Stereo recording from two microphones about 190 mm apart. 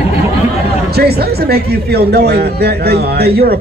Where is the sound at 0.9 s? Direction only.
55° right (ahead or behind).